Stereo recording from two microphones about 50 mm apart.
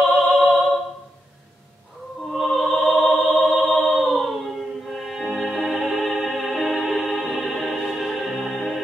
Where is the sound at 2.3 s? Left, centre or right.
Centre.